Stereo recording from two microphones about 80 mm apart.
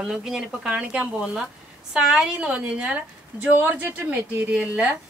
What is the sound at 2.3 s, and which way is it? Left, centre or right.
A woman's voice, centre.